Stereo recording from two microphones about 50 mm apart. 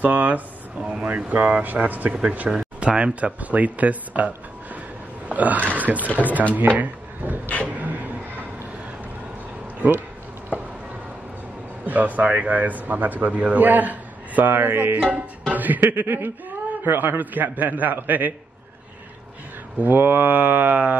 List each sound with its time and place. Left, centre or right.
0.0 s a man's voice: right
2.5 s a man's voice: right
5.3 s a man's voice: right
6.6 s speech: right
7.2 s vehicle: right
7.6 s a sound: right
11.8 s a man's voice: right
15.0 s a man's voice: right
19.8 s a man's voice: right